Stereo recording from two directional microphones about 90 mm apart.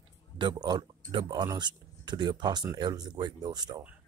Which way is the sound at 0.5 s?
55° right (ahead or behind).